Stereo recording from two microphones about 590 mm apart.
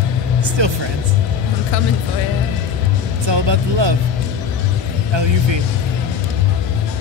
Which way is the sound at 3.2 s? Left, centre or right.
Right.